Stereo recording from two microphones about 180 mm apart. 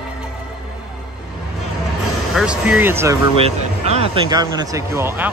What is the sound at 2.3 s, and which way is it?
Speech, 5° right (ahead or behind).